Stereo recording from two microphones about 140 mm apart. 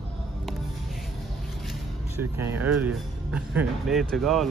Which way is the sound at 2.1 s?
15° right (ahead or behind).